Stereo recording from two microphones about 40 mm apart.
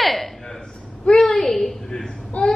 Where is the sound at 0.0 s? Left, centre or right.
Centre.